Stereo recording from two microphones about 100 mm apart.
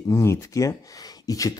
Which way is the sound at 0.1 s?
30° left (ahead or behind).